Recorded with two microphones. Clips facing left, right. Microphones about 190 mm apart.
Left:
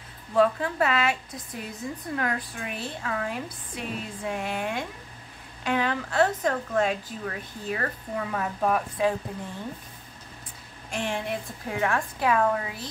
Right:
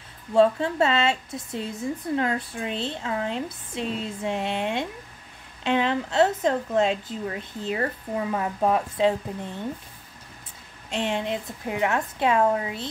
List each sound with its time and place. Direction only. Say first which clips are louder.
0.3 s a woman's voice: right 3 dB; 25° right (ahead or behind)
10.9 s a woman's voice: right 3 dB; 20° right (ahead or behind)